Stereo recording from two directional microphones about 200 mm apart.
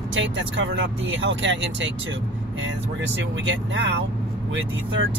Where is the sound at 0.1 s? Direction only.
70° right (ahead or behind).